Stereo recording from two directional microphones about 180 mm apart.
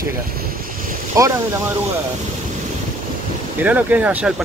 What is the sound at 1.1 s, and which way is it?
Speech, 15° right (ahead or behind).